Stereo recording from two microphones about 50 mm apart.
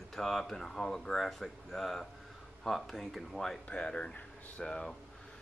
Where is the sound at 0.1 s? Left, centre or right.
Centre.